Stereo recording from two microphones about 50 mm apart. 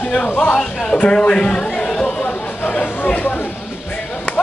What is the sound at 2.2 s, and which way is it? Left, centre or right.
Chatter, left.